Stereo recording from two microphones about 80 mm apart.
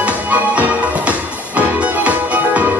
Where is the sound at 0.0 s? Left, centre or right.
Centre.